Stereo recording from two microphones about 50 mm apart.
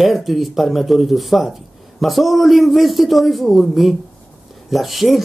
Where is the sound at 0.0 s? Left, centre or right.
Centre.